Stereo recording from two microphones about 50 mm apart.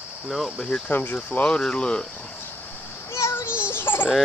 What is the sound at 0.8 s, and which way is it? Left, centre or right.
Speech, left.